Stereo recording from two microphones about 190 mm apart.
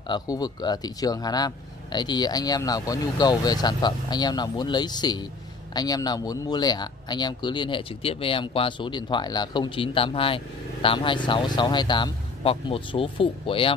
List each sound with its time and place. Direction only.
0.1 s speech: 20° left (ahead or behind)